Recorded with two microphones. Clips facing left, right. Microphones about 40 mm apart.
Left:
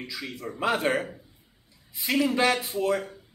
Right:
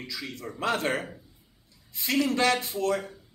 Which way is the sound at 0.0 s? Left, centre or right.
Centre.